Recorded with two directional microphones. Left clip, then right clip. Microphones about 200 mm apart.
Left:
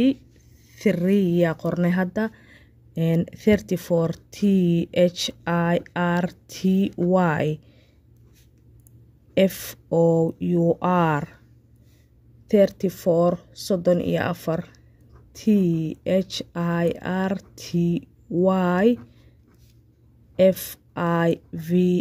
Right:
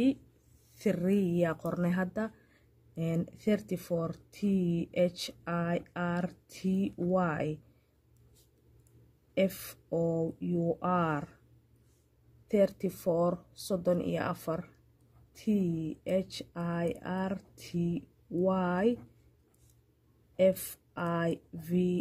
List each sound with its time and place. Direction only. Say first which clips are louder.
0.7 s speech: left 9 dB; 25° left (ahead or behind)
9.3 s speech: left 10 dB; 30° left (ahead or behind)
12.4 s speech: left 9 dB; 25° left (ahead or behind)
20.3 s speech: left 9 dB; 25° left (ahead or behind)